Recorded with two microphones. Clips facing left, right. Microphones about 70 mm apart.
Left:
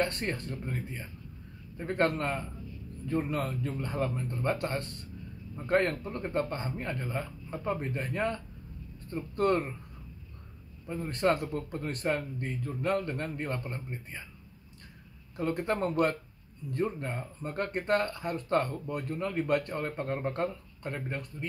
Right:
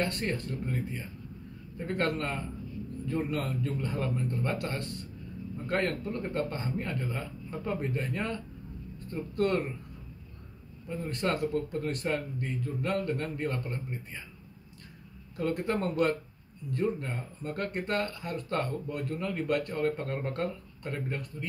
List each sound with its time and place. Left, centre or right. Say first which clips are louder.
0.0 s speech: even; left
4.6 s speech: left 2 dB; left
5.7 s speech: left 3 dB; left
11.1 s speech: left 2 dB; left
15.3 s speech: even; left